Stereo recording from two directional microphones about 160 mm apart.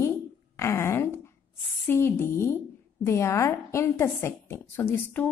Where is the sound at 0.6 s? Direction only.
15° left (ahead or behind).